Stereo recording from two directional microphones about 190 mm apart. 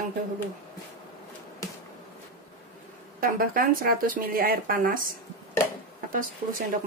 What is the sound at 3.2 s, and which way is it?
Speech, 50° right (ahead or behind).